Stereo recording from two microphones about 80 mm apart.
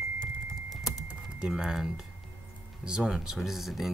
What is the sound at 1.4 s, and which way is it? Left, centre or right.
Speech, centre.